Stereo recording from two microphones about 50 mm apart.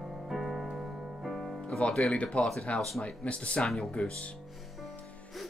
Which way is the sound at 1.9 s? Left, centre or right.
Centre.